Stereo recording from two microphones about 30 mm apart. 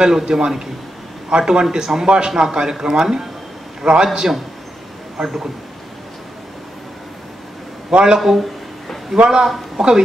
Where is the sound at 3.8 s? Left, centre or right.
Right.